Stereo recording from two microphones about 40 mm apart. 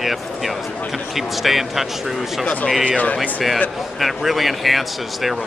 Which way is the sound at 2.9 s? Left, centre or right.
Left.